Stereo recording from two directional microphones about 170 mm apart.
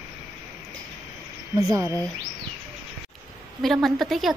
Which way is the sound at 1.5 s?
20° right (ahead or behind).